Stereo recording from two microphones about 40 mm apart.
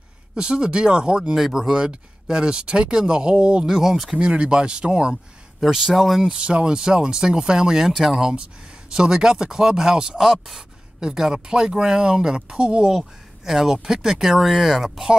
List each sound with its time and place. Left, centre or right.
0.4 s speech: right
1.3 s speech: centre
1.7 s speech: right
3.6 s speech: centre
4.2 s speech: right
5.7 s speech: centre
5.9 s speech: centre
6.2 s speech: right
7.9 s speech: centre
10.2 s speech: centre; by 12.9 s right
13.5 s speech: centre